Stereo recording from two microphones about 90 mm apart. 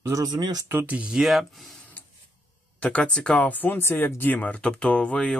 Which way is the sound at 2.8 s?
15° left (ahead or behind).